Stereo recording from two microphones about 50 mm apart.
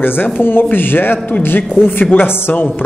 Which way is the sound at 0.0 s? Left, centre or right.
Left.